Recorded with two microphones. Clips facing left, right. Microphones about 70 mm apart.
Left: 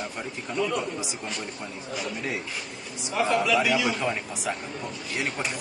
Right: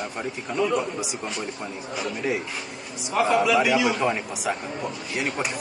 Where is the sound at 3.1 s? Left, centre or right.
Centre.